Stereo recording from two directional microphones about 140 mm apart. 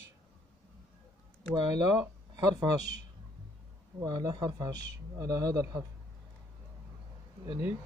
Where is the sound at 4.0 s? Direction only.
30° right (ahead or behind).